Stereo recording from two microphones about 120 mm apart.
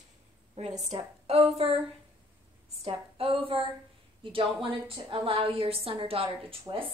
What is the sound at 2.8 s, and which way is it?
A woman's voice, 50° right (ahead or behind).